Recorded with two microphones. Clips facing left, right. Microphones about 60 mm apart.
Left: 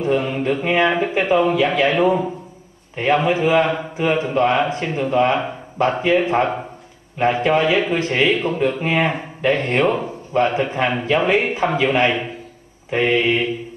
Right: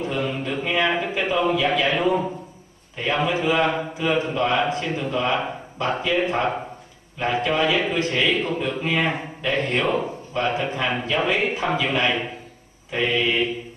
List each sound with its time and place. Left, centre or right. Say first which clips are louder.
0.0 s a man's voice: left 6 dB; left
3.2 s a man's voice: left 3 dB; left
9.5 s speech: left 4 dB; left
10.3 s a man's voice: left 6 dB; left